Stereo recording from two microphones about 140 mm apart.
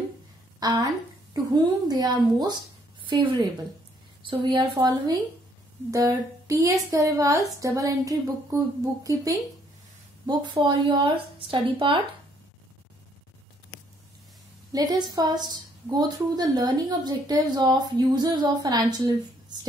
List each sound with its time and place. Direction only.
0.6 s a woman's voice: 25° right (ahead or behind)
1.9 s a woman's voice: 30° right (ahead or behind)
14.7 s a woman's voice: 30° right (ahead or behind)